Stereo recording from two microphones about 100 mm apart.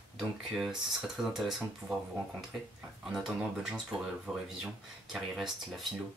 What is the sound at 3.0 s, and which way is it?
Speech, 5° right (ahead or behind).